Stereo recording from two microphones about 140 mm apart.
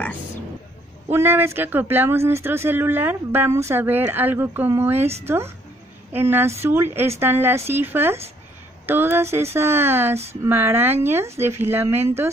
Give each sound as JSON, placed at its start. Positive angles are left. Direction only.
{"t": 1.1, "sound": "speech", "side_deg": -15}